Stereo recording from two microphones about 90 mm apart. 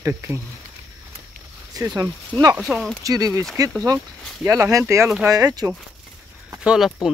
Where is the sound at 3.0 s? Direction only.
40° right (ahead or behind).